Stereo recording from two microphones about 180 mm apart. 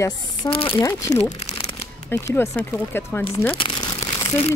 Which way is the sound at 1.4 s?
35° left (ahead or behind).